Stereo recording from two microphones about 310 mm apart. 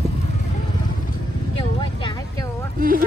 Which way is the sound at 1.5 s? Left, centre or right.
Centre.